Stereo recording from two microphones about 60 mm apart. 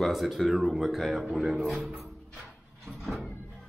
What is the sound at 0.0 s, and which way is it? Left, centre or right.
Speech, centre.